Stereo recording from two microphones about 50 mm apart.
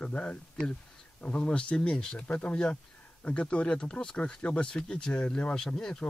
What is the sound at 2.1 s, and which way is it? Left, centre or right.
Speech, left.